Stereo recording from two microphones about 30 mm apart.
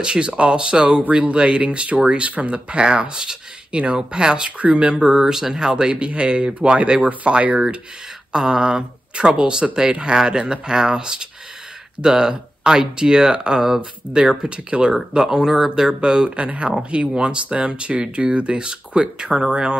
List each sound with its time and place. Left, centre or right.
0.0 s speech: right
4.5 s speech: right
5.0 s speech: centre; by 7.1 s right
8.5 s speech: right
15.1 s speech: centre
16.3 s speech: right